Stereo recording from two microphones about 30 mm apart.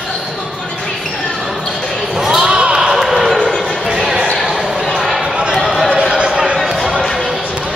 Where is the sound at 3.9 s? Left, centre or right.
Right.